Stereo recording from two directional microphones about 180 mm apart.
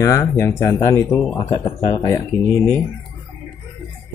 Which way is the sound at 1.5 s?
25° left (ahead or behind).